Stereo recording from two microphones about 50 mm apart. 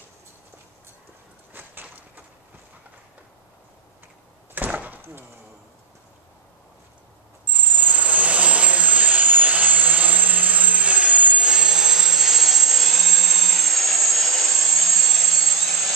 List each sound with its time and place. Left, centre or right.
1.5 s walk: right
4.6 s door: right
7.4 s aircraft: right; by 15.9 s centre